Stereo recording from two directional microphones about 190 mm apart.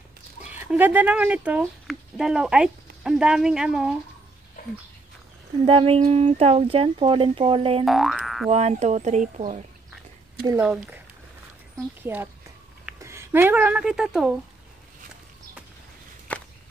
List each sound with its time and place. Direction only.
0.5 s speech: 10° right (ahead or behind)
5.7 s speech: 30° right (ahead or behind)
7.8 s boing: centre (ahead or behind)
8.5 s speech: 35° right (ahead or behind)
10.4 s speech: 15° right (ahead or behind)
12.0 s speech: 10° right (ahead or behind)
16.3 s chop: 10° left (ahead or behind)